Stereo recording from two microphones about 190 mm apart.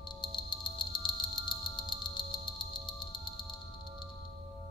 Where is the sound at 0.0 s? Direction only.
25° left (ahead or behind).